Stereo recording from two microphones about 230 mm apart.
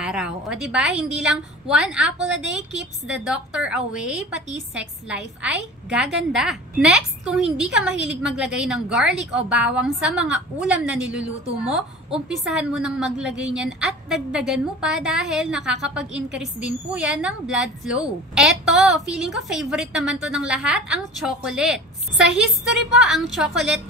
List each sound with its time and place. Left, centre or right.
0.0 s speech: centre